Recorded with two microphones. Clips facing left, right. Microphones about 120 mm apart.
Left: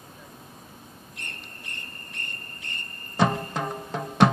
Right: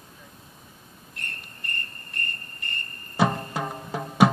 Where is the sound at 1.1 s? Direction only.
Centre (ahead or behind).